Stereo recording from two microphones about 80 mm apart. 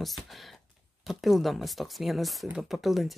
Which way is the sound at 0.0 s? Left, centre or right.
Centre.